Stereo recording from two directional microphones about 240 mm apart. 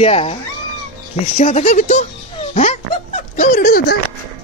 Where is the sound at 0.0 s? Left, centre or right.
Left.